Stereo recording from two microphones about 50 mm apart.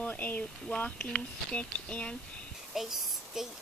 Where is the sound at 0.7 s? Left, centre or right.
Left.